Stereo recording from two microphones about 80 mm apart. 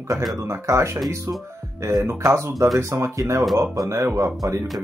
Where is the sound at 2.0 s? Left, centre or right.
Right.